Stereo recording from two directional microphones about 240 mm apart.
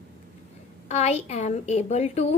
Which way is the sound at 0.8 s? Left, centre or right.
Left.